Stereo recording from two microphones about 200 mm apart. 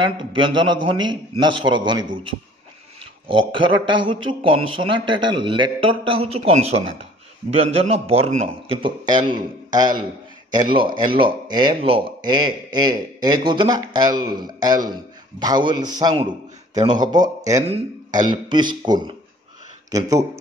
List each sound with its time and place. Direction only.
0.0 s speech: 25° right (ahead or behind)
3.3 s speech: 25° right (ahead or behind)
17.6 s speech: 25° right (ahead or behind)